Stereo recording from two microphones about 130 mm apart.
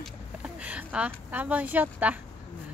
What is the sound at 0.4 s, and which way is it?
A woman's voice, 10° right (ahead or behind).